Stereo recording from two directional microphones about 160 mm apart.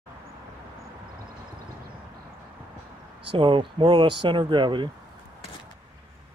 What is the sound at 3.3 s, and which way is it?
Speech, 30° right (ahead or behind).